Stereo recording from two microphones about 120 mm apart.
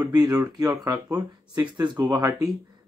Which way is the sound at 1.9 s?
20° right (ahead or behind).